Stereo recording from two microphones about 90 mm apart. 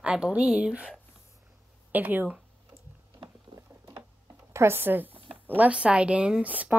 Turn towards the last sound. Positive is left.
turn(degrees=-15)  # may be behind; listen again after turning